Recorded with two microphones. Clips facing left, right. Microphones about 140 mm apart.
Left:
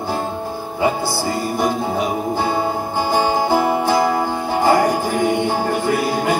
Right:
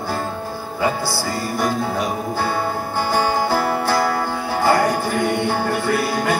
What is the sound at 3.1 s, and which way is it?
Music, 15° left (ahead or behind).